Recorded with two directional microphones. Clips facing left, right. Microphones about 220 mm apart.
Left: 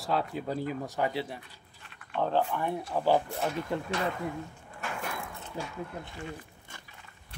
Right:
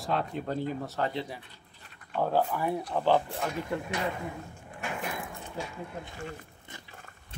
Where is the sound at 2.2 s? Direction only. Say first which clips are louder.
Right 1 dB; 10° right (ahead or behind).